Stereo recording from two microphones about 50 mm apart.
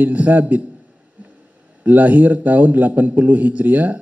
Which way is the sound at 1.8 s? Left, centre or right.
Right.